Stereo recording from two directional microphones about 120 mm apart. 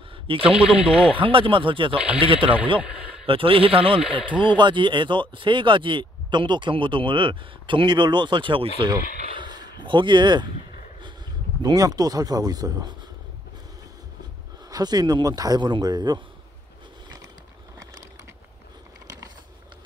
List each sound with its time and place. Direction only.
0.1 s radio: 50° right (ahead or behind)
0.7 s speech: 50° right (ahead or behind)
2.8 s a sound: 10° right (ahead or behind)
3.3 s speech: 50° right (ahead or behind)
9.4 s speech: 40° right (ahead or behind)
14.7 s speech: 35° right (ahead or behind)
19.0 s a sound: 30° right (ahead or behind)